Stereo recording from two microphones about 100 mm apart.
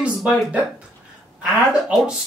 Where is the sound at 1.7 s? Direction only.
10° right (ahead or behind).